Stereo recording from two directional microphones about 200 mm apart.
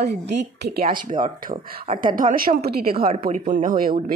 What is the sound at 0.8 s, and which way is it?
Speech, 25° right (ahead or behind).